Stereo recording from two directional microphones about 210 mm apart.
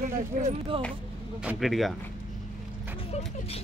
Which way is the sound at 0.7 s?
25° right (ahead or behind).